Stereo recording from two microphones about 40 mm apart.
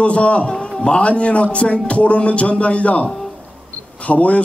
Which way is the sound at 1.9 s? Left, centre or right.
Left.